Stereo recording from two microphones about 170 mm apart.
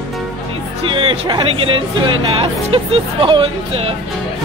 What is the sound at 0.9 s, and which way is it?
Speech, 30° right (ahead or behind).